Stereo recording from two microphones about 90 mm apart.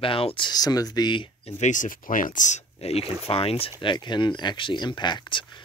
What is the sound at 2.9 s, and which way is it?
Speech, 90° left.